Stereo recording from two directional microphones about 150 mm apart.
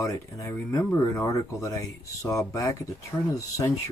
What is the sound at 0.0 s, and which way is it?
Speech, 20° left (ahead or behind).